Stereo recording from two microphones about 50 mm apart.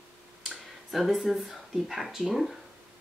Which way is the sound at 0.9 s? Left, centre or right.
Centre.